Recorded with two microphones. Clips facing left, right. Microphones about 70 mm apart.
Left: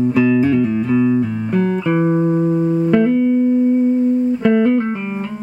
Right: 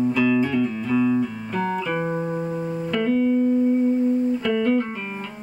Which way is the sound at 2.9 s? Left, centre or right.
Left.